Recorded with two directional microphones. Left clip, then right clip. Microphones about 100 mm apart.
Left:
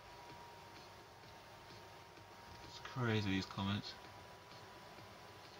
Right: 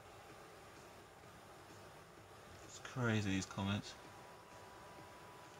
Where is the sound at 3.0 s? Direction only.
60° right (ahead or behind).